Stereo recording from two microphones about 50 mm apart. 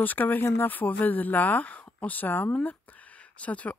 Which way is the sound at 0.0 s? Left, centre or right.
Left.